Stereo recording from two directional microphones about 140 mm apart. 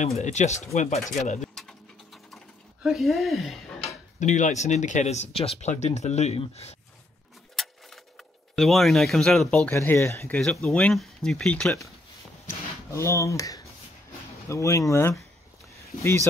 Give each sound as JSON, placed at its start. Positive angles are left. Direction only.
{"t": 0.0, "sound": "speech", "side_deg": 55}
{"t": 1.4, "sound": "pigeon", "side_deg": 0}
{"t": 2.3, "sound": "a sound", "side_deg": 0}
{"t": 4.2, "sound": "speech", "side_deg": 60}
{"t": 7.5, "sound": "speech", "side_deg": 0}
{"t": 10.3, "sound": "speech", "side_deg": 5}
{"t": 12.4, "sound": "speech", "side_deg": 20}